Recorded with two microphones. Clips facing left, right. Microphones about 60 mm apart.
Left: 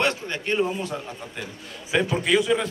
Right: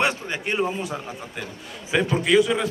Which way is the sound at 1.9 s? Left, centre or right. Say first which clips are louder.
Right 2 dB; centre.